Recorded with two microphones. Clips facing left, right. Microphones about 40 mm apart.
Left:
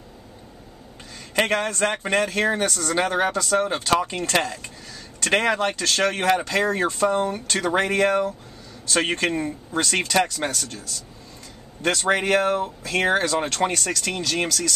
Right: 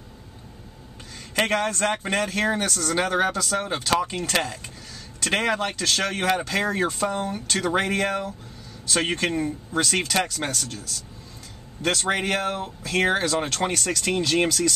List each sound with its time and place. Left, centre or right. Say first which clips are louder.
1.3 s a man's voice: left 1 dB; centre
7.1 s speech: left 5 dB; centre
7.7 s a man's voice: left 5 dB; centre
11.8 s speech: left 3 dB; centre